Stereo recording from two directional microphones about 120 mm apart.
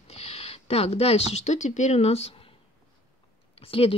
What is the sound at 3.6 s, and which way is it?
Speech, 50° left (ahead or behind).